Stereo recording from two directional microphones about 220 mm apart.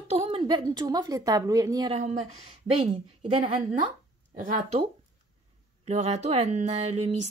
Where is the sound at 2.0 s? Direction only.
30° right (ahead or behind).